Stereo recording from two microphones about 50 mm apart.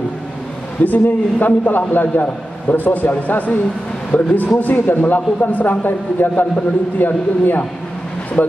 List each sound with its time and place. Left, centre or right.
0.8 s speech: left